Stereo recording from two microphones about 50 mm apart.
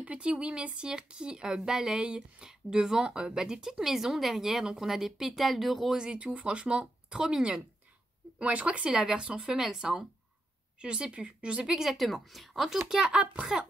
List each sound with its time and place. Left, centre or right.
0.0 s speech: right; by 5.9 s centre
5.9 s speech: centre
8.4 s speech: right